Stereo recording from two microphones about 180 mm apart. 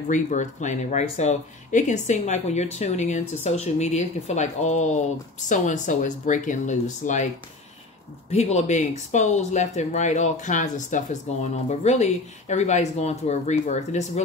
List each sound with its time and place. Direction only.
0.1 s speech: 40° left (ahead or behind)
8.3 s speech: 35° left (ahead or behind)